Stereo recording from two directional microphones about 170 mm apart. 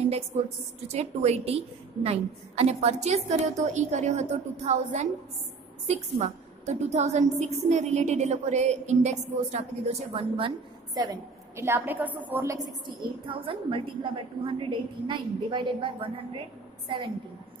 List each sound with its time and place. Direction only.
0.8 s a woman's voice: 40° right (ahead or behind)
11.0 s a woman's voice: 20° right (ahead or behind)
13.3 s a woman's voice: 30° right (ahead or behind)